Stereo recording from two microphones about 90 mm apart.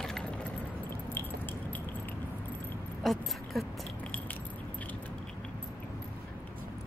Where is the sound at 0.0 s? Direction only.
10° left (ahead or behind).